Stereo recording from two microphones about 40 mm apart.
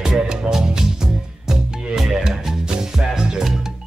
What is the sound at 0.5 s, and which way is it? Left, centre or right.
Music, centre.